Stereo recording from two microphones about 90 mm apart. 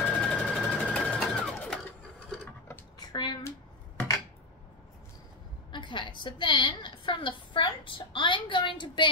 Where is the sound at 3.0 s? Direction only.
50° left (ahead or behind).